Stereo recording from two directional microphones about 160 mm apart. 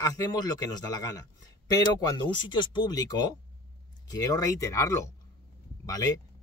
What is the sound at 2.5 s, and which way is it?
Speech, 30° left (ahead or behind).